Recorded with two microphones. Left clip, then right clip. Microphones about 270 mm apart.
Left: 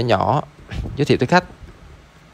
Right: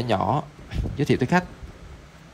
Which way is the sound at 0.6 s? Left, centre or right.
Centre.